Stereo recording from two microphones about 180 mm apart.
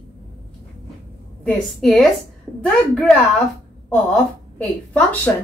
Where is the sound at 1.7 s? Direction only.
Centre (ahead or behind).